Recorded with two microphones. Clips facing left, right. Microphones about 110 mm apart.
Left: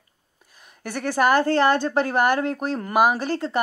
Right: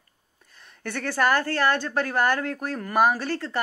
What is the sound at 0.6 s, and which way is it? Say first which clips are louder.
Speech: left 2 dB; 10° left (ahead or behind).